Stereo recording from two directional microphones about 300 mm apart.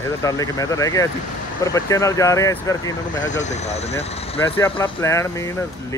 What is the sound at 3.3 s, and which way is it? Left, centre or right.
Speech, left.